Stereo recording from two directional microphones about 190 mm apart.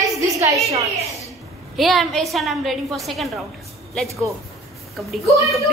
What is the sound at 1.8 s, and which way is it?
A woman's voice, centre (ahead or behind).